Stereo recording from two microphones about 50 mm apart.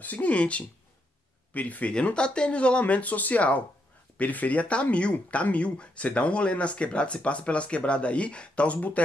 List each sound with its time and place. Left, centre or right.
0.0 s speech: left
8.7 s speech: left